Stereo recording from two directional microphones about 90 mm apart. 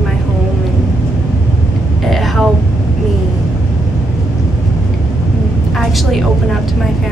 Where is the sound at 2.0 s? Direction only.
Centre (ahead or behind).